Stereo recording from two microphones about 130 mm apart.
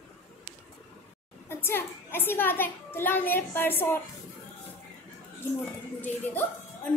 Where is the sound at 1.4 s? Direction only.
20° left (ahead or behind).